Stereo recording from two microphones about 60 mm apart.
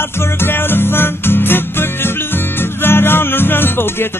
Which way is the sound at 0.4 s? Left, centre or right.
Left.